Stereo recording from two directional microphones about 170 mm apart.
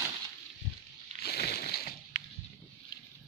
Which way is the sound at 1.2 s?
70° left (ahead or behind).